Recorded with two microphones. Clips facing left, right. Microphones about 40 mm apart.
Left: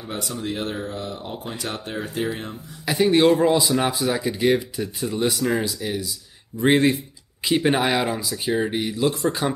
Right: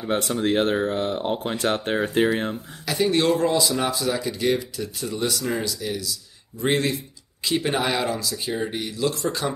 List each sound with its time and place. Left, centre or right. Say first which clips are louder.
0.1 s speech: right 7 dB; right
2.8 s speech: left 4 dB; centre